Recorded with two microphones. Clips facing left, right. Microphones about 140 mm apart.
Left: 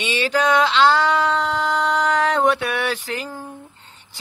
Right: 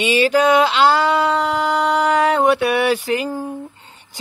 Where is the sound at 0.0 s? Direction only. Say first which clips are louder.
Right 6 dB; 10° right (ahead or behind).